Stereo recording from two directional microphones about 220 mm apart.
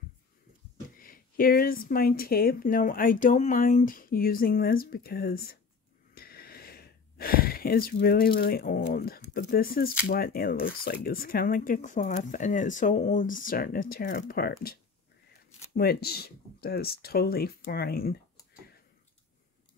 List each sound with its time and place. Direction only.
0.9 s speech: 40° left (ahead or behind)
6.1 s a sound: 45° left (ahead or behind)
10.0 s speech: 40° left (ahead or behind)